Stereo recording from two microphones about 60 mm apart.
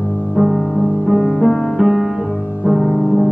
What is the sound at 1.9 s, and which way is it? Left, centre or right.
Music, centre.